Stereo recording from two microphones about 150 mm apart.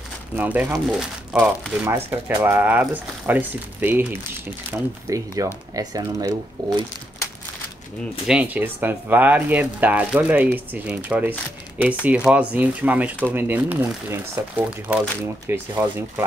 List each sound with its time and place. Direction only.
0.4 s speech: 10° right (ahead or behind); by 6.7 s 25° right (ahead or behind)
8.3 s speech: 10° right (ahead or behind)